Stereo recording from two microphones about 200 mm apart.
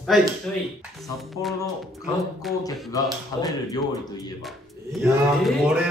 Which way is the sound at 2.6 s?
15° left (ahead or behind).